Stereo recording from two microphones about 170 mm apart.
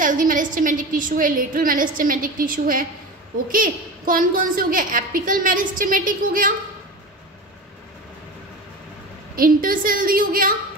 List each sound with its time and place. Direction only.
0.0 s a woman's voice: 50° right (ahead or behind)
9.3 s a woman's voice: 55° right (ahead or behind)